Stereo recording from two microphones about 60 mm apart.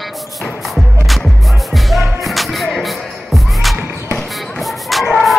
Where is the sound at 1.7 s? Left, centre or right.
Centre.